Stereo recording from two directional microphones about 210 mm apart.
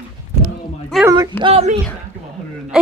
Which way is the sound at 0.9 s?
Centre (ahead or behind).